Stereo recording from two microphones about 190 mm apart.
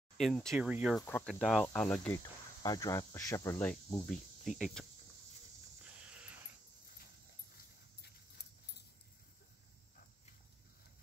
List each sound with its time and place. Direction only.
0.2 s speech: centre (ahead or behind)
0.9 s speech: 10° left (ahead or behind)
2.6 s speech: 20° left (ahead or behind); by 4.8 s 5° left (ahead or behind)
5.9 s a sound: 5° right (ahead or behind)